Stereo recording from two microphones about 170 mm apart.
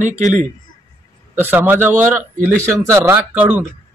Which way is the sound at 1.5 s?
10° right (ahead or behind).